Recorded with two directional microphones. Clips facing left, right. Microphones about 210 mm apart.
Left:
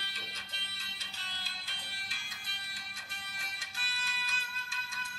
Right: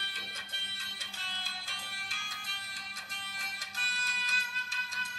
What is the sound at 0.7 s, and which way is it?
Music, 50° right (ahead or behind).